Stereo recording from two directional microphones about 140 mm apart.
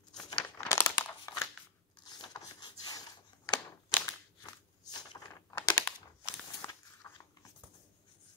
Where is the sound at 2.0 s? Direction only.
30° left (ahead or behind).